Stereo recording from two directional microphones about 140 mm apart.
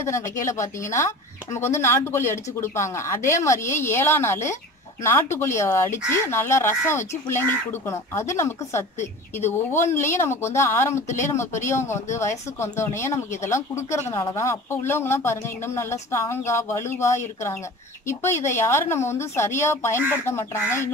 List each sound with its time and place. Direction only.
0.0 s speech: 20° left (ahead or behind)